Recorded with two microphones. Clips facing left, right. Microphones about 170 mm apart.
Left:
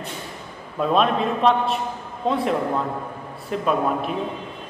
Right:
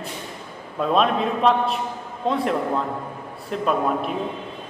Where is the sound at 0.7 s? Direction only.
Centre (ahead or behind).